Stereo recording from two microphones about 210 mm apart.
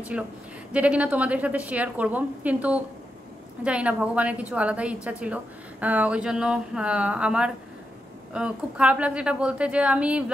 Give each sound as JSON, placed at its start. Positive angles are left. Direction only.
{"t": 0.1, "sound": "a woman's voice", "side_deg": -5}